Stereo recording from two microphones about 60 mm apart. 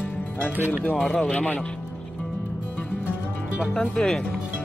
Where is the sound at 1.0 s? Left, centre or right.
Centre.